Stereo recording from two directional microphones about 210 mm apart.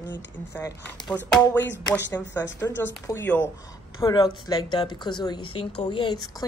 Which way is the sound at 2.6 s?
10° left (ahead or behind).